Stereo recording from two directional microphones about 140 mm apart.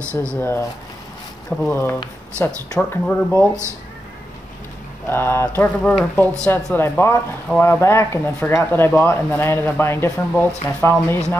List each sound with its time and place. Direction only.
0.1 s speech: 20° right (ahead or behind)
0.4 s speech: 15° left (ahead or behind)
1.7 s speech: 15° left (ahead or behind)
5.0 s speech: 15° left (ahead or behind)